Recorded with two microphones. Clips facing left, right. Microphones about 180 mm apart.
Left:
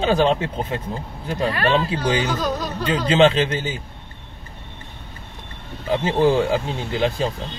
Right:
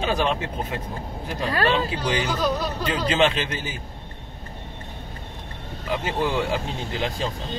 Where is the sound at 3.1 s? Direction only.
20° left (ahead or behind).